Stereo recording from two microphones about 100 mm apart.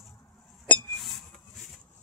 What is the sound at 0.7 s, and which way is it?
Chink, 15° left (ahead or behind).